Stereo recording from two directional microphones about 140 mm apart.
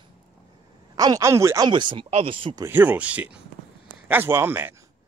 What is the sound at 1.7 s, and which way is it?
Speech, 35° right (ahead or behind).